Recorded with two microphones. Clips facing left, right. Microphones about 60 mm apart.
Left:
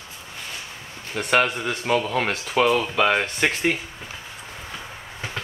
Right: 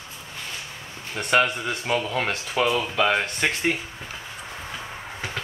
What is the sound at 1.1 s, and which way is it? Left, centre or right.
Speech, centre.